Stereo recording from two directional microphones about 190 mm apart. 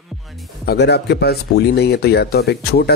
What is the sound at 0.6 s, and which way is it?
Speech, 60° left (ahead or behind).